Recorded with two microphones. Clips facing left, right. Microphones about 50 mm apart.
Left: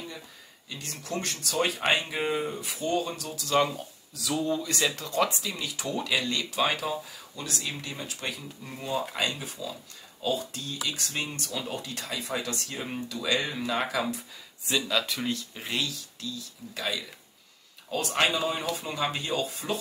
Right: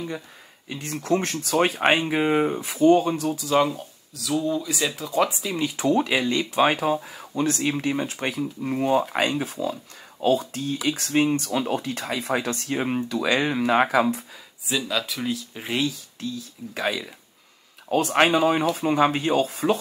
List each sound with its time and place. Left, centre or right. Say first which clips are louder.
0.7 s speech: right 12 dB; right
3.3 s speech: even; centre
5.7 s speech: right 11 dB; right
6.1 s speech: right 6 dB; right
9.6 s speech: right 9 dB; right
14.7 s speech: right 2 dB; centre
17.8 s speech: right 7 dB; right